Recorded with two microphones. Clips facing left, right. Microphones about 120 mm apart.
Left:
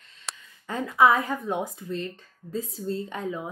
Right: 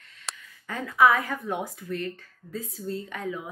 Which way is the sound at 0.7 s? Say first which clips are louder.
Left 1 dB; 25° left (ahead or behind).